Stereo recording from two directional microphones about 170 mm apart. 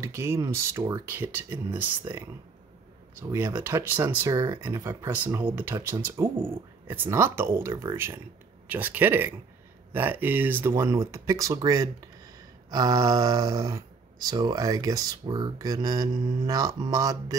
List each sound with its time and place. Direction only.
0.0 s speech: 15° right (ahead or behind)